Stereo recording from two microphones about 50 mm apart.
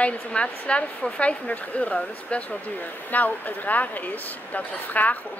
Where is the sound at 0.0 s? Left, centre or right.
Left.